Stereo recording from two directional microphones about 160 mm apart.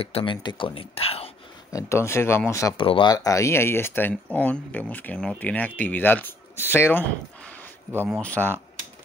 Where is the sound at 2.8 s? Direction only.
30° left (ahead or behind); by 8.5 s 10° left (ahead or behind).